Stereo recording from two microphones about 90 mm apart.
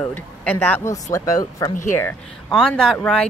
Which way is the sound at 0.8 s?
40° left (ahead or behind).